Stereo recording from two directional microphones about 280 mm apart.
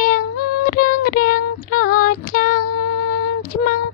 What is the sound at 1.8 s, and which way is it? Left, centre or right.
Child singing, left.